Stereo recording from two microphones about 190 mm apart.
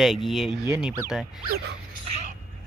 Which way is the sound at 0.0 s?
Centre (ahead or behind).